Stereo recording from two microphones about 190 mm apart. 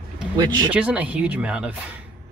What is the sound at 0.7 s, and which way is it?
Speech, 5° right (ahead or behind).